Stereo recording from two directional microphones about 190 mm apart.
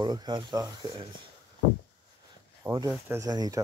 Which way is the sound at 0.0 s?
20° right (ahead or behind).